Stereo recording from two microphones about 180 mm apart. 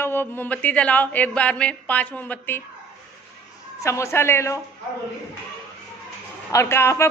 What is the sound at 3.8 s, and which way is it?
Speech, 15° left (ahead or behind).